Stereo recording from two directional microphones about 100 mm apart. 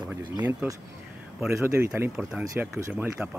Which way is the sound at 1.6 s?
25° right (ahead or behind).